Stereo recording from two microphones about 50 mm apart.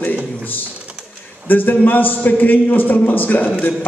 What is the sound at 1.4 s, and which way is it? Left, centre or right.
A man's voice, left.